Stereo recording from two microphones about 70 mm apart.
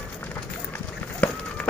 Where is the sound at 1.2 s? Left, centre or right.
Left.